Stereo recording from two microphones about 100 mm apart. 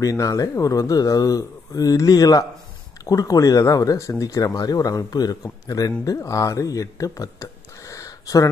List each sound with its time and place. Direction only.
0.0 s speech: 35° left (ahead or behind)